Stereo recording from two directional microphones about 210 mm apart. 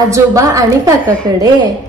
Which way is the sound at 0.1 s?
15° right (ahead or behind).